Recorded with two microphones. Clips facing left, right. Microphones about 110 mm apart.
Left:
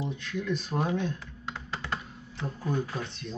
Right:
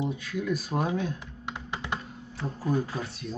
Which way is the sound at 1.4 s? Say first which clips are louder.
Right 2 dB; 15° right (ahead or behind).